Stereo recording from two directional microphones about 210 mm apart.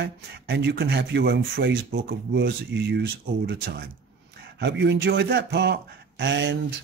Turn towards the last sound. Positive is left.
turn(degrees=-60)  # may be behind; listen again after turning